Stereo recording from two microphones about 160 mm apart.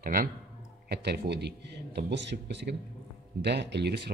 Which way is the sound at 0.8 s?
90° right.